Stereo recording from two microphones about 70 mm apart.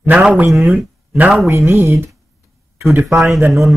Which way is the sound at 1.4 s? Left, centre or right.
Right.